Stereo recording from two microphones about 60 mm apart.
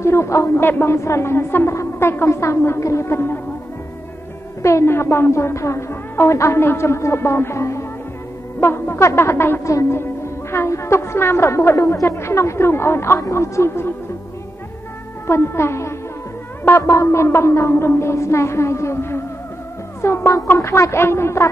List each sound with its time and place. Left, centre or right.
0.0 s a woman's voice: left
0.6 s a woman's voice: left
4.6 s a woman's voice: left
6.6 s a woman's voice: left
8.5 s music: left
9.7 s a woman's voice: left
9.9 s a woman's voice: left
15.2 s a woman's voice: left